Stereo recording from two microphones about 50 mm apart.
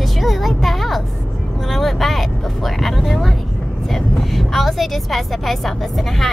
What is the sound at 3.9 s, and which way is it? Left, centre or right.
Speech, centre.